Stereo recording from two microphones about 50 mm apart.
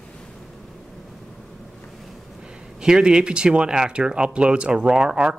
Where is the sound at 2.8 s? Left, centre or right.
Centre.